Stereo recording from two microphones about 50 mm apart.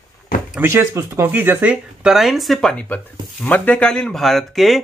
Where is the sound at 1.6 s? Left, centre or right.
Right.